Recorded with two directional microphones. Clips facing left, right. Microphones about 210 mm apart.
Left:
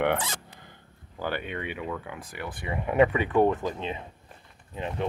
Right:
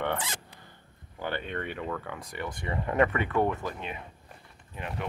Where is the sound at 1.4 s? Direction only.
5° left (ahead or behind).